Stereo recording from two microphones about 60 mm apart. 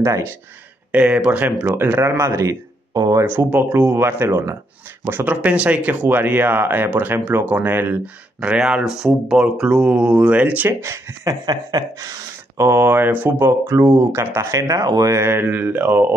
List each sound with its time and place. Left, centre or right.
0.0 s speech: right
0.9 s speech: centre
1.7 s speech: right
2.0 s speech: right
3.6 s speech: right
4.0 s speech: right
5.2 s speech: right
8.4 s speech: centre
10.7 s speech: right
11.2 s speech: right
12.5 s speech: right
13.5 s speech: right
15.2 s speech: right